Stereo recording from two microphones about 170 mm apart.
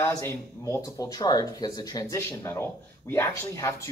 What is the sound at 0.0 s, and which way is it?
Speech, 15° left (ahead or behind).